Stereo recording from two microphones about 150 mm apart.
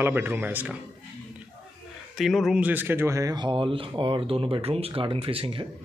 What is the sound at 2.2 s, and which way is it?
Speech, centre (ahead or behind).